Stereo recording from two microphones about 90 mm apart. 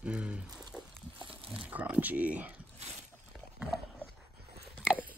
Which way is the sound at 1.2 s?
80° right.